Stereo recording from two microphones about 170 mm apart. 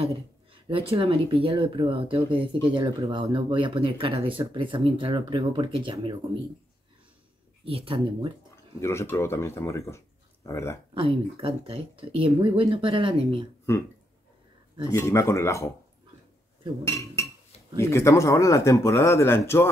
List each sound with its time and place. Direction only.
0.7 s speech: 30° right (ahead or behind)
7.6 s speech: 35° right (ahead or behind)
8.8 s speech: 15° left (ahead or behind)
11.0 s speech: 35° right (ahead or behind)
14.9 s speech: 15° left (ahead or behind)
16.8 s speech: 15° left (ahead or behind)